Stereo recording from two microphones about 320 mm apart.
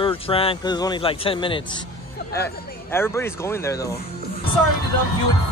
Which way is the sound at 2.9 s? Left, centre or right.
Centre.